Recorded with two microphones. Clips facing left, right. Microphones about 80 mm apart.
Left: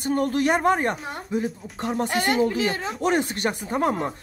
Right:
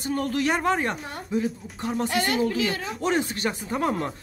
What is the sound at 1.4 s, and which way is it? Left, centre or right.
Speech, left.